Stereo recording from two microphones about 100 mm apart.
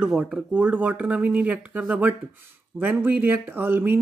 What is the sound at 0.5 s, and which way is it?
Speech, 15° right (ahead or behind).